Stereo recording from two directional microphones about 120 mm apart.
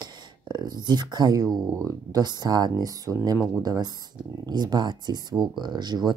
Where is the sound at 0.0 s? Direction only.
35° right (ahead or behind).